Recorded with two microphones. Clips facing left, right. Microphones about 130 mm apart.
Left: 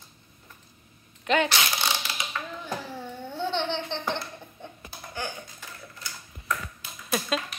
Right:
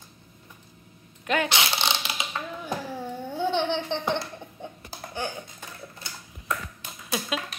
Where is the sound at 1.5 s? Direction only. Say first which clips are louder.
Right 1 dB; 25° right (ahead or behind).